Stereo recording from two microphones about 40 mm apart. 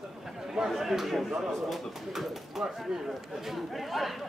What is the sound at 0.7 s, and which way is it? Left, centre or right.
Speech, centre.